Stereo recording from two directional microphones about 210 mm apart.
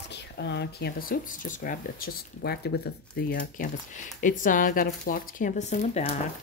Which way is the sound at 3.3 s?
35° left (ahead or behind).